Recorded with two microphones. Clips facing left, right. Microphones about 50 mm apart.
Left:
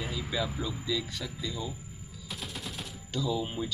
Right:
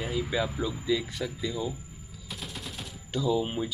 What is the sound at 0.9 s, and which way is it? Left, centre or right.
Speech, centre.